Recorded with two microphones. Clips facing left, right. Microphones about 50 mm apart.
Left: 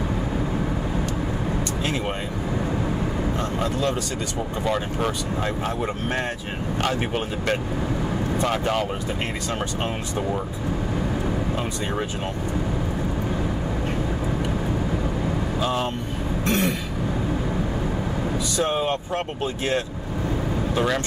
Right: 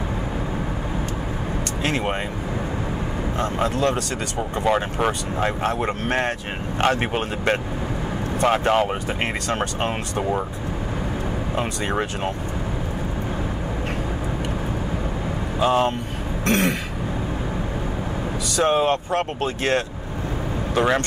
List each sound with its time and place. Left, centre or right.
4.6 s speech: right
5.7 s speech: right
6.8 s speech: right
8.5 s speech: right
15.6 s speech: right
16.4 s throat clearing: right
18.6 s speech: right
20.7 s speech: right